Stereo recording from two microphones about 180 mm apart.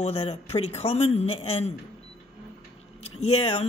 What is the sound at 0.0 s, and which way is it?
Speech, 30° left (ahead or behind).